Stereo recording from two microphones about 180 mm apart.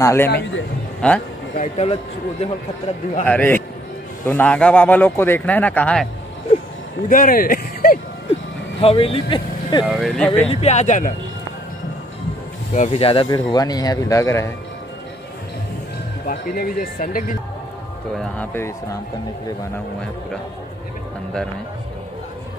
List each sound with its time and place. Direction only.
0.0 s speech: 15° left (ahead or behind)
1.6 s speech: 35° left (ahead or behind)
3.3 s speech: 10° left (ahead or behind)
7.1 s speech: 50° left (ahead or behind)
8.8 s speech: 30° left (ahead or behind)
9.8 s speech: centre (ahead or behind)
10.5 s speech: 40° left (ahead or behind)
12.7 s speech: 40° left (ahead or behind); by 14.5 s 15° left (ahead or behind)
16.3 s speech: 55° left (ahead or behind)
18.4 s speech: 15° left (ahead or behind)